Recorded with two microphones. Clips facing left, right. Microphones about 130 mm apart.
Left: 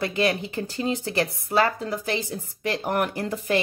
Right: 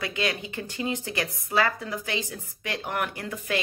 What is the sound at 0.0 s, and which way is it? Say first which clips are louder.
Speech: left 6 dB; 35° left (ahead or behind).